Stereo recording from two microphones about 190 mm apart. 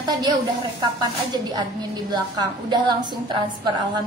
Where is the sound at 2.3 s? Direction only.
20° right (ahead or behind).